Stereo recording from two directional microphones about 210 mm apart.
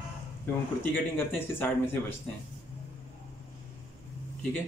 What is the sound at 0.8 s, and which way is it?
Speech, 10° left (ahead or behind).